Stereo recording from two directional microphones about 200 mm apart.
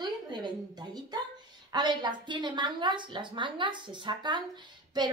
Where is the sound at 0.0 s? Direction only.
20° right (ahead or behind).